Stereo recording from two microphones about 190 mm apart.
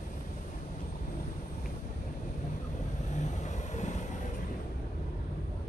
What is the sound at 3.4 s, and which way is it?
Vehicle, 40° left (ahead or behind).